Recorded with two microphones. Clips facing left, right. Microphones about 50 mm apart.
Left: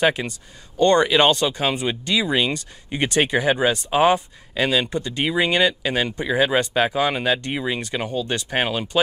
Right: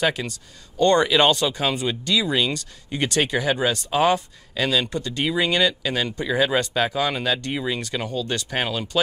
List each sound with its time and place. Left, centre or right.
0.0 s speech: centre
0.7 s speech: centre
1.7 s speech: centre